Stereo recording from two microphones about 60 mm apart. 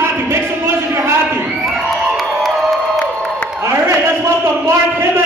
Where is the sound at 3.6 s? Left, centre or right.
Right.